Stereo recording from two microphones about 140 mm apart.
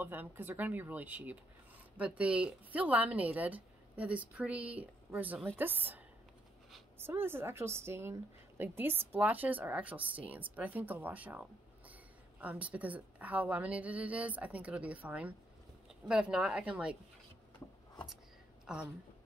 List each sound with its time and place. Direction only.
0.0 s a woman's voice: 15° right (ahead or behind)
18.7 s speech: 5° right (ahead or behind)